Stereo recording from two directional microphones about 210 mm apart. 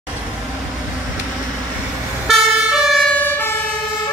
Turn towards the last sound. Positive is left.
turn(degrees=10)  # may be behind; listen again after turning